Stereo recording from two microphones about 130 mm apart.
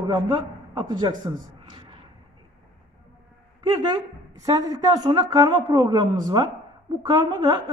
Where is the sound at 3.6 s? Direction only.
30° right (ahead or behind).